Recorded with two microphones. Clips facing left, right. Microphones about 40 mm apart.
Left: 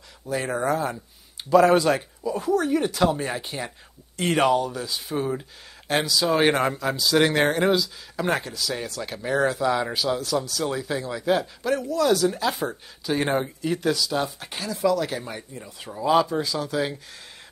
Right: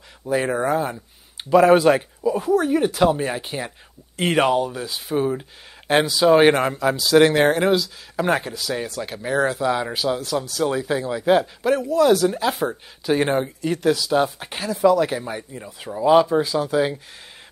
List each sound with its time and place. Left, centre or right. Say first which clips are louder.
0.3 s speech: right 4 dB; right
5.9 s speech: right 7 dB; right
6.5 s speech: right 3 dB; centre; by 11.7 s right
11.7 s speech: right 5 dB; centre
13.3 s speech: right 3 dB; centre
13.9 s speech: right 6 dB; centre